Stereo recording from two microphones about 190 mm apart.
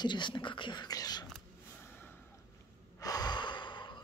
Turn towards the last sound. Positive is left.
turn(degrees=25)  # may be behind; listen again after turning